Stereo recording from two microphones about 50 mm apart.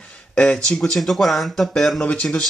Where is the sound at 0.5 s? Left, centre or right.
Centre.